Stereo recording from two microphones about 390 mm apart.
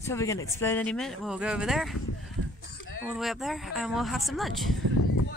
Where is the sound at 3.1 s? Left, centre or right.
Centre.